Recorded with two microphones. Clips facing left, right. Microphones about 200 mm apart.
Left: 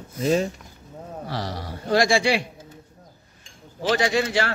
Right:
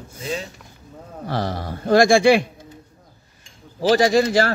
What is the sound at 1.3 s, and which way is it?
Speech, 50° right (ahead or behind).